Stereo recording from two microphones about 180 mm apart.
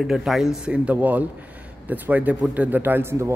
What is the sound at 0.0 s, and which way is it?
A man's voice, centre (ahead or behind).